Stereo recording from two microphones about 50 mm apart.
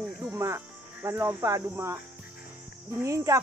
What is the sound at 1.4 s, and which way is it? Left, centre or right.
Cricket, right.